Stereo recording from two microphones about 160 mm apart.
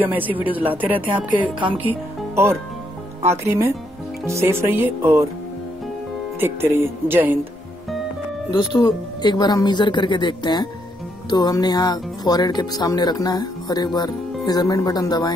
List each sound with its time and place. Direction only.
0.0 s speech: 10° right (ahead or behind)
6.4 s speech: 15° right (ahead or behind)
8.5 s speech: 30° left (ahead or behind)